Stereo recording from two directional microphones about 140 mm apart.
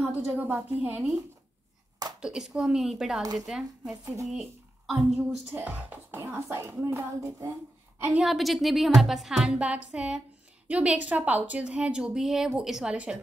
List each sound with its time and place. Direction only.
0.0 s a woman's voice: 10° right (ahead or behind)
2.1 s a woman's voice: 5° right (ahead or behind)
4.0 s a woman's voice: 25° right (ahead or behind)
4.3 s speech: centre (ahead or behind)
5.5 s a woman's voice: 10° right (ahead or behind)
8.0 s a woman's voice: 5° right (ahead or behind)